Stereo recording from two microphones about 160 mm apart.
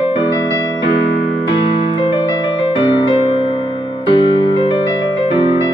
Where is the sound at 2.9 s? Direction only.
30° left (ahead or behind).